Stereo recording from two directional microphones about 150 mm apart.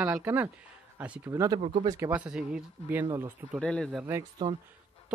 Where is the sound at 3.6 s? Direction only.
5° left (ahead or behind).